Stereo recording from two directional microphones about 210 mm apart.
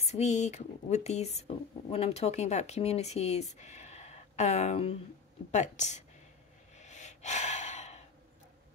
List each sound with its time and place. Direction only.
0.0 s speech: 30° left (ahead or behind)
6.8 s gasp: 35° left (ahead or behind)